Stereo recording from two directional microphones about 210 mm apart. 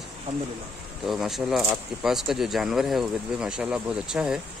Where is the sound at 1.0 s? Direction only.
Centre (ahead or behind).